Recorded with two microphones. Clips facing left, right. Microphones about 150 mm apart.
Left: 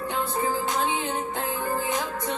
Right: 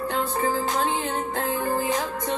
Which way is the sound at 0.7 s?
Centre (ahead or behind).